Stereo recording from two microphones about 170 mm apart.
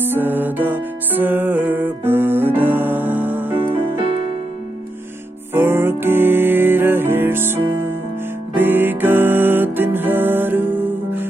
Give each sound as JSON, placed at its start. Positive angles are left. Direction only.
{"t": 0.0, "sound": "music", "side_deg": -10}
{"t": 3.5, "sound": "music", "side_deg": -35}
{"t": 5.5, "sound": "music", "side_deg": -15}